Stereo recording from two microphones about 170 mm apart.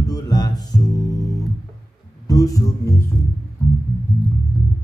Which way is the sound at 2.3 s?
20° left (ahead or behind).